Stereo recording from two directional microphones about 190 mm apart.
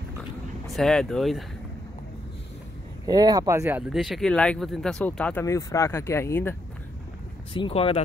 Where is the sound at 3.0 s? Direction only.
20° right (ahead or behind); by 6.5 s 10° left (ahead or behind).